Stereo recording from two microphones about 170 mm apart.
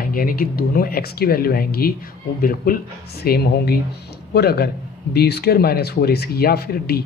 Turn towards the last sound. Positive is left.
turn(degrees=65)  # may be behind; listen again after turning